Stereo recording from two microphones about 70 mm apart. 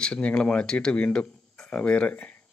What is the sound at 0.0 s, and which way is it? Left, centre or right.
Speech, centre.